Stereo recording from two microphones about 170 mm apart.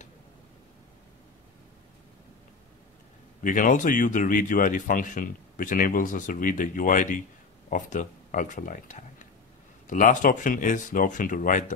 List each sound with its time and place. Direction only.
3.4 s speech: 50° left (ahead or behind)